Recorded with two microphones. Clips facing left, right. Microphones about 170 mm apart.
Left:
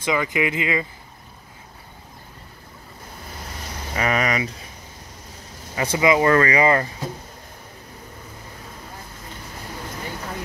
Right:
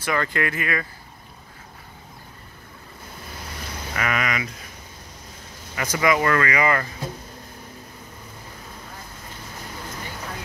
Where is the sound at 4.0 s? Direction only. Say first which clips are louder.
Left 4 dB; 35° left (ahead or behind).